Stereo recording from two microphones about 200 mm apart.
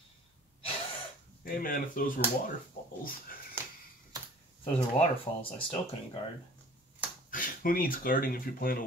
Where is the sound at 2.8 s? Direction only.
45° left (ahead or behind).